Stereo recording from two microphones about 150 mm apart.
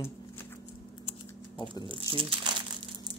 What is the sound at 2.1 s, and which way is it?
Speech, 35° right (ahead or behind).